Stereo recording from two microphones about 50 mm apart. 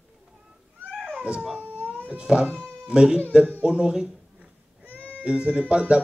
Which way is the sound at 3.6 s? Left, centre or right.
Centre.